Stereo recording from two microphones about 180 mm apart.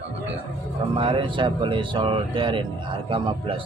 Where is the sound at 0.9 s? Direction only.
30° right (ahead or behind).